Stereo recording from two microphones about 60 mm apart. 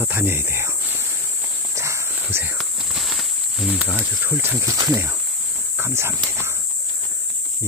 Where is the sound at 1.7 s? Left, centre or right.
Right.